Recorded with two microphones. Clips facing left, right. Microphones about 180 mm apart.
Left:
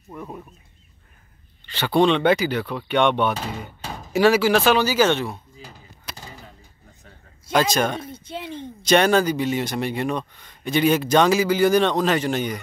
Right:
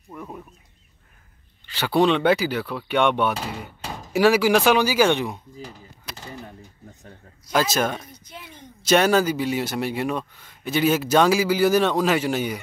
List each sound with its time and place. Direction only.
0.1 s speech: centre (ahead or behind)
1.7 s speech: 10° right (ahead or behind)
5.6 s a sound: 10° left (ahead or behind)
6.9 s a sound: 40° right (ahead or behind)
7.5 s speech: 5° right (ahead or behind)
8.0 s speech: 25° left (ahead or behind)
8.8 s speech: 5° right (ahead or behind)